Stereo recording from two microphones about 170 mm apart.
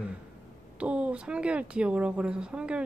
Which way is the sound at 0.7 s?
5° right (ahead or behind).